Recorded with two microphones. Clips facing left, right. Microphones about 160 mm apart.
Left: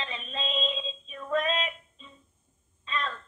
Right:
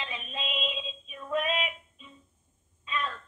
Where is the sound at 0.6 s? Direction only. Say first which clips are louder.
Left 3 dB; 15° right (ahead or behind).